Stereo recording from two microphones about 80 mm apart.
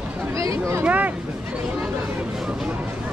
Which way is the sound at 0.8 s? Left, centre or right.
Centre.